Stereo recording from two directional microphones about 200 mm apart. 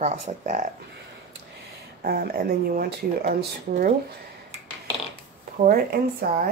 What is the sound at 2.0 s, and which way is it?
Speech, 50° right (ahead or behind).